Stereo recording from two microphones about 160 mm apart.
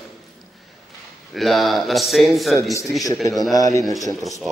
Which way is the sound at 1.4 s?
Centre (ahead or behind).